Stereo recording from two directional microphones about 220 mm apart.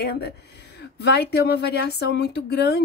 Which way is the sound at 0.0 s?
45° left (ahead or behind).